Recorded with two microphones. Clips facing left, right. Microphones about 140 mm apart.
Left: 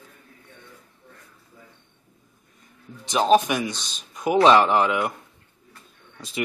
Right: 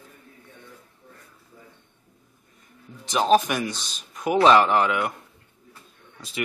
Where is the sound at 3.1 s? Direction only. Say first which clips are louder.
Left 1 dB; centre (ahead or behind).